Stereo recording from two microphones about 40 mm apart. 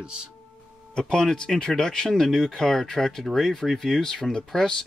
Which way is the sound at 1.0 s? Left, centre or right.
Centre.